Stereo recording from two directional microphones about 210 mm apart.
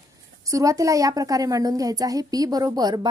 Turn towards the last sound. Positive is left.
turn(degrees=-20)  # may be behind; listen again after turning